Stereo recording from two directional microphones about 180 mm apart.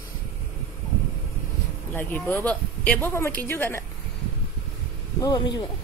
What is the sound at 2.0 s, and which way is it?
Speech, 10° left (ahead or behind).